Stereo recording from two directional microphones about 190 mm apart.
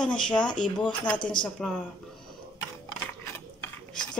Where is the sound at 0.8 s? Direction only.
25° left (ahead or behind).